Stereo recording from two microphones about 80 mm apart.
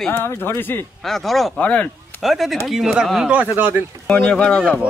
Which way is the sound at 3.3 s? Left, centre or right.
Right.